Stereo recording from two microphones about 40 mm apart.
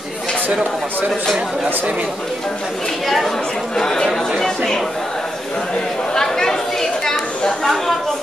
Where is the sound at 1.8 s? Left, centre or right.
Right.